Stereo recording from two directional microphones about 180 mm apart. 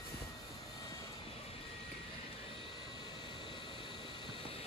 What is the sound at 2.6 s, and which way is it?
Vehicle, 25° left (ahead or behind).